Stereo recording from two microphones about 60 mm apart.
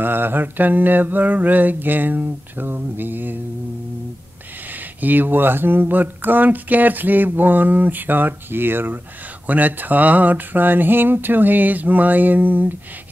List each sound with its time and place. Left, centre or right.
0.0 s speech: right
5.0 s speech: right